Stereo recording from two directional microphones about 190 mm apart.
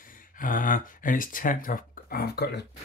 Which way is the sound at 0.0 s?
45° left (ahead or behind).